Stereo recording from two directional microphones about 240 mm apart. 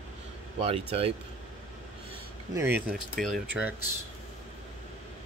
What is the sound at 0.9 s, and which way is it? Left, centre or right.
Speech, right.